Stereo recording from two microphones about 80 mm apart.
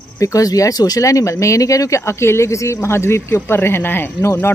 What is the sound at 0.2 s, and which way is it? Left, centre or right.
Speech, left.